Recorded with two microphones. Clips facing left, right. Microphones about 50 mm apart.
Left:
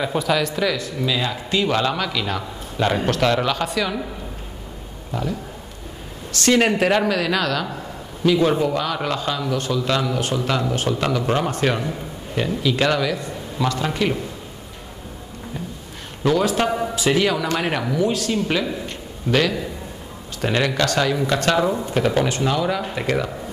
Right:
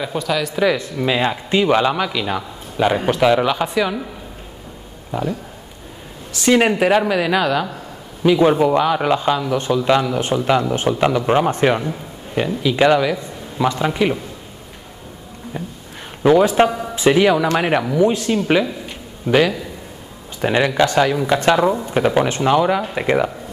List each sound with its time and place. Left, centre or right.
0.0 s speech: centre
0.7 s speech: right; by 3.9 s centre
5.1 s speech: centre
6.3 s speech: centre
16.2 s a man's voice: right